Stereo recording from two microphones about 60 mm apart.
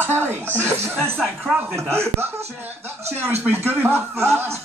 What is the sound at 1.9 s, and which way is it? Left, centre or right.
Snicker, right.